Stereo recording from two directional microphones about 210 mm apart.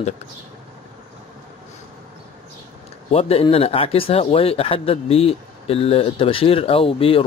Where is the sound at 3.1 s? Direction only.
30° left (ahead or behind).